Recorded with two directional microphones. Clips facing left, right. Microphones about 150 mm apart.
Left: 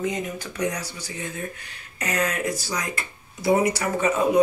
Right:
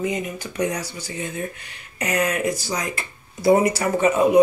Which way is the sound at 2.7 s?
25° right (ahead or behind).